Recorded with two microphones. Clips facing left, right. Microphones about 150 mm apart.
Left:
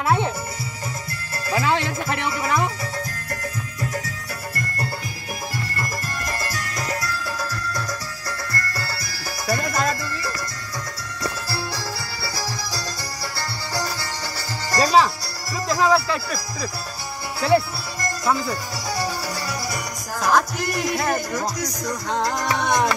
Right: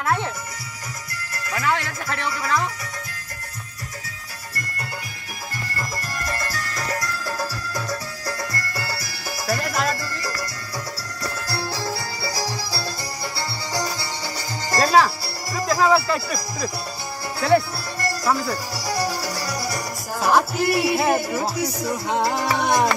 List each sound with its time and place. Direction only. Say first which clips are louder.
0.0 s music: left 3 dB; 15° left (ahead or behind)
1.3 s music: left 3 dB; 25° left (ahead or behind)
5.8 s music: left 1 dB; 5° left (ahead or behind)
7.3 s music: even; 10° right (ahead or behind)
9.5 s music: left 1 dB; 5° right (ahead or behind)
12.2 s music: right 2 dB; 15° right (ahead or behind)
15.7 s speech: right 1 dB; 5° right (ahead or behind)